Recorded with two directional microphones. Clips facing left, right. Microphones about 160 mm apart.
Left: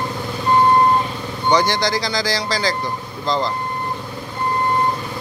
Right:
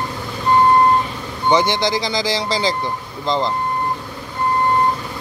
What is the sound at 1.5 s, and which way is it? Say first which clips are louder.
Speech: right 1 dB; 20° right (ahead or behind).